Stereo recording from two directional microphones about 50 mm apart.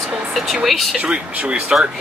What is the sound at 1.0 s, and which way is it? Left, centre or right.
Speech, right.